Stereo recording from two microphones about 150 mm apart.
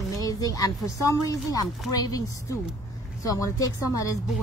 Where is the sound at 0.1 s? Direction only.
25° left (ahead or behind).